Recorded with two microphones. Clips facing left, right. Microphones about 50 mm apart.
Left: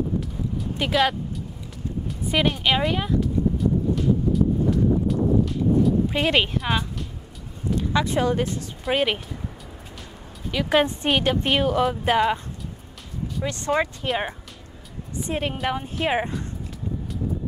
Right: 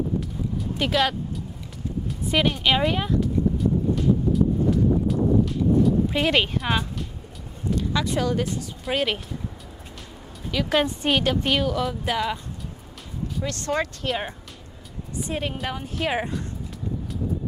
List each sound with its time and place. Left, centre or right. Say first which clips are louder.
0.7 s speech: left 1 dB; centre
2.3 s a sound: even; centre
6.0 s speech: even; centre
7.7 s speech: left 2 dB; left
8.9 s speech: left 2 dB; centre
10.5 s speech: left 2 dB; centre
11.9 s speech: left 5 dB; left
13.4 s speech: left 3 dB; centre
15.2 s a woman's voice: left 4 dB; left